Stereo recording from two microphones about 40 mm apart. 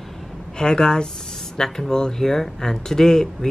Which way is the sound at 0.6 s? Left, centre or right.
Centre.